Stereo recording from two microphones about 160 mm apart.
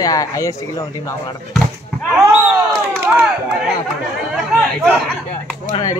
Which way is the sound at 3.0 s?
10° right (ahead or behind).